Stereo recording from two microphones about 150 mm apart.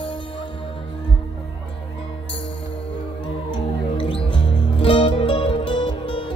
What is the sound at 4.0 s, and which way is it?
Music, 35° left (ahead or behind).